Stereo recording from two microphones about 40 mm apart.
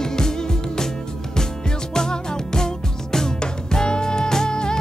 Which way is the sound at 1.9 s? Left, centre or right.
Centre.